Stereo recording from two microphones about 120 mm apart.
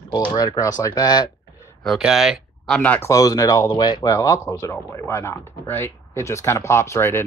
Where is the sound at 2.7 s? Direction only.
15° left (ahead or behind).